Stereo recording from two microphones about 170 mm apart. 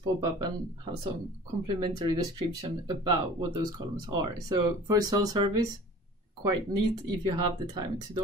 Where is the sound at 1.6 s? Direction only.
20° right (ahead or behind).